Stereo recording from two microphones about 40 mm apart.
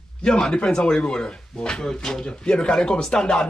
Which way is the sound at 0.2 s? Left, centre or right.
Left.